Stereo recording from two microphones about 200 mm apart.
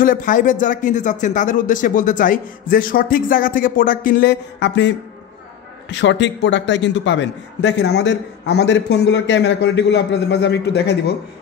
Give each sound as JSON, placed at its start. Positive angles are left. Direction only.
{"t": 0.0, "sound": "a man's voice", "side_deg": 40}